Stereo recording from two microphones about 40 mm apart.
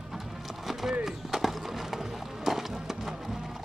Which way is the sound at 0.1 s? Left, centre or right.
Centre.